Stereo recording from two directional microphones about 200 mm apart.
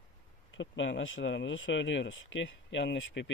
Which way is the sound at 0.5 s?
65° left (ahead or behind).